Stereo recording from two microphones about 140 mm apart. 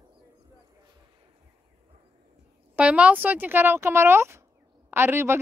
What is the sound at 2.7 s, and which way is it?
Speech, 10° right (ahead or behind).